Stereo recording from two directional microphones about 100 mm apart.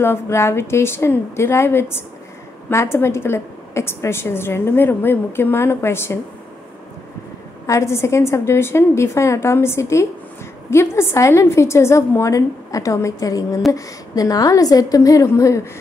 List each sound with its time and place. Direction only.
0.0 s a woman's voice: 25° left (ahead or behind)
7.6 s a woman's voice: 30° left (ahead or behind)